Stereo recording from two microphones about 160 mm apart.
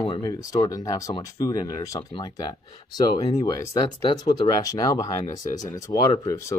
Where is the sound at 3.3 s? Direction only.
25° left (ahead or behind).